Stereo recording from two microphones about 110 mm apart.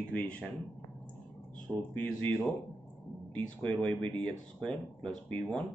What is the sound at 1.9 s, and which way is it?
Speech, 15° left (ahead or behind).